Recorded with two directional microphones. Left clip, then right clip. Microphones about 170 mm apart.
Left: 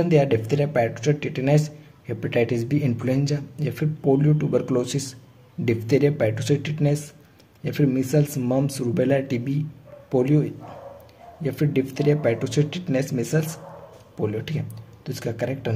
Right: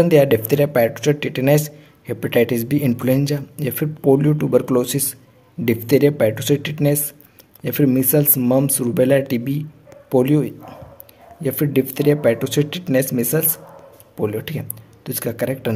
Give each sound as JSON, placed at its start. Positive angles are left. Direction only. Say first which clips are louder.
{"t": 0.0, "sound": "speech", "louder": "right 7 dB", "side_deg": -30}